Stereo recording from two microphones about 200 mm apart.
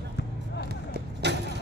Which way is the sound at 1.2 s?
60° right (ahead or behind).